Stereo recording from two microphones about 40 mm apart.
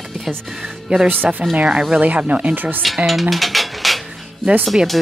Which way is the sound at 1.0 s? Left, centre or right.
Right.